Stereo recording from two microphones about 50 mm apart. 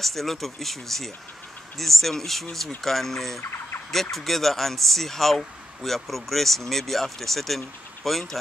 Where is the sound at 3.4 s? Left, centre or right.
Left.